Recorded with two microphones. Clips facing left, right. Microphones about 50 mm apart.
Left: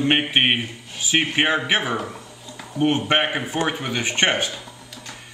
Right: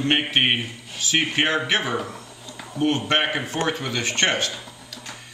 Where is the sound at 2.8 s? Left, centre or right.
Centre.